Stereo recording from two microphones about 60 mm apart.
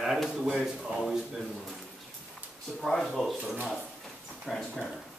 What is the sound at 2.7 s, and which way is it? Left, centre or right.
Speech, centre.